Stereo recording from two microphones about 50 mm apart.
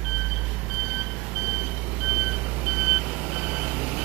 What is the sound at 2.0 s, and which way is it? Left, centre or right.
Beep, centre.